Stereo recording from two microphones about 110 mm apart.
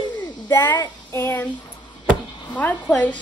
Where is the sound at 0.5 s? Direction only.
20° left (ahead or behind).